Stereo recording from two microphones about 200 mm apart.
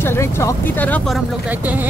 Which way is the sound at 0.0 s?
15° left (ahead or behind).